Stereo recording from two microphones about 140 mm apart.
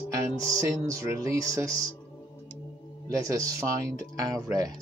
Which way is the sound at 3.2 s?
25° right (ahead or behind).